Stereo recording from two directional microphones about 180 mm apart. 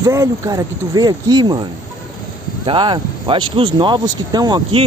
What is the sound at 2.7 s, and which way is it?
Speech, 25° right (ahead or behind).